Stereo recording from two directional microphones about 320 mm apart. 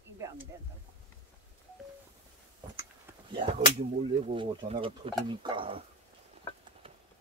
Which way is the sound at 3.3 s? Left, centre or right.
Centre.